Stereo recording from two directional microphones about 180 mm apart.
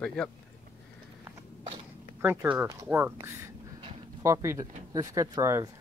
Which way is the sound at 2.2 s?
10° right (ahead or behind).